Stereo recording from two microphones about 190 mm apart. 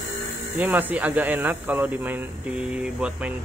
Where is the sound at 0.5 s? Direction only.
10° right (ahead or behind).